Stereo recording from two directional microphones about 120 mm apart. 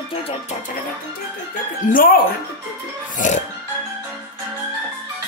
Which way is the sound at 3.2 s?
90° left.